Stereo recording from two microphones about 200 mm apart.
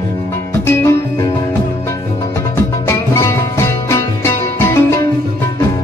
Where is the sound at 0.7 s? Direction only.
15° left (ahead or behind).